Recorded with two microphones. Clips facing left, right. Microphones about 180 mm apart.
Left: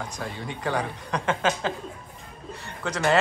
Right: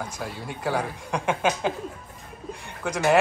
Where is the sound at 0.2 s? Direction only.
5° right (ahead or behind).